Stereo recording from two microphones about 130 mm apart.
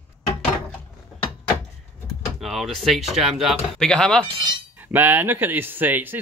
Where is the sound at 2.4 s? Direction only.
Centre (ahead or behind).